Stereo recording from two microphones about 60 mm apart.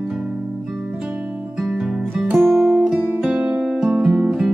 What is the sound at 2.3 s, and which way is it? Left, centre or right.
Music, centre.